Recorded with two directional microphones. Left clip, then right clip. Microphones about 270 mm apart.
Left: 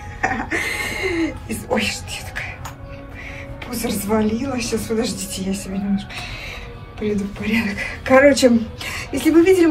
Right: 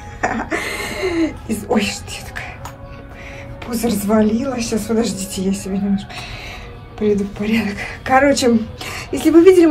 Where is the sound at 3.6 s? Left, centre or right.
Centre.